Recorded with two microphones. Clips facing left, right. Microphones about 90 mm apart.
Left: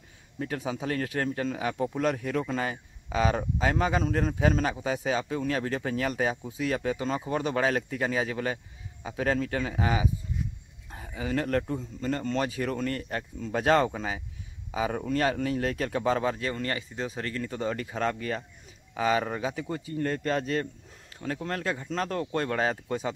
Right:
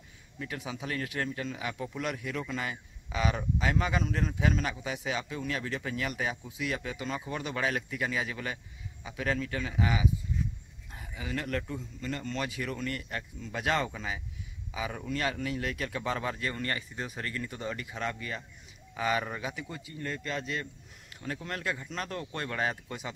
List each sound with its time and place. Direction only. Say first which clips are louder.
0.4 s speech: left 6 dB; 40° left (ahead or behind)
18.9 s speech: left 4 dB; 35° left (ahead or behind)